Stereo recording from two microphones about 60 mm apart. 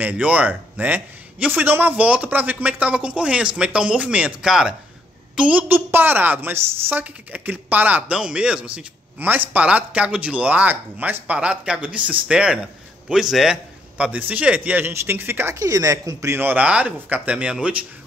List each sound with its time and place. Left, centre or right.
0.0 s a man's voice: right
4.5 s speech: centre
5.3 s a woman's voice: right
5.9 s a woman's voice: right
8.1 s speech: centre
9.2 s a man's voice: right
11.3 s a man's voice: centre
13.9 s a man's voice: right
14.9 s a woman's voice: right
15.6 s speech: right
16.3 s a woman's voice: right
16.6 s a man's voice: right